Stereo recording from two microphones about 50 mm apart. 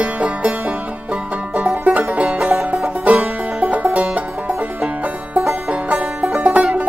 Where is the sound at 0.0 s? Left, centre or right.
Right.